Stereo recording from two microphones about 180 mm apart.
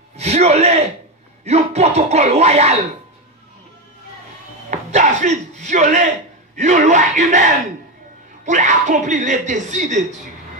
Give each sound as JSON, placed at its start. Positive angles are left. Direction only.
{"t": 0.2, "sound": "a sound", "side_deg": -35}
{"t": 1.4, "sound": "speech", "side_deg": -35}
{"t": 4.6, "sound": "speech", "side_deg": -40}